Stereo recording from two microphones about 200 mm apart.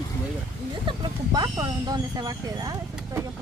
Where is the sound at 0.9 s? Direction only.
20° right (ahead or behind).